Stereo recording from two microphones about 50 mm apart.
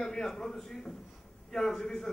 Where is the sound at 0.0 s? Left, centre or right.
Centre.